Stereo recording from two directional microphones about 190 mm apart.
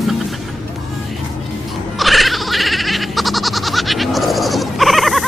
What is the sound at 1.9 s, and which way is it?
Goat, centre (ahead or behind).